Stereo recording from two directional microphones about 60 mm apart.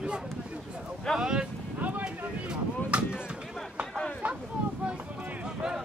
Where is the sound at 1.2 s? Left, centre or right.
Centre.